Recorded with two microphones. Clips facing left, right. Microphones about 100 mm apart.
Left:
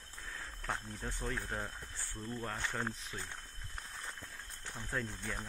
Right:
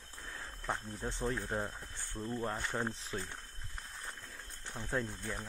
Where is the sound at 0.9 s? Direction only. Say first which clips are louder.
Right 4 dB; 20° right (ahead or behind).